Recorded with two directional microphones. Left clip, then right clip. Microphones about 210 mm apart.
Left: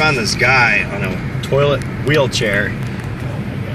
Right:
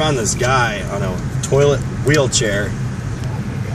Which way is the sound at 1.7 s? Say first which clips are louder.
Even; 40° right (ahead or behind).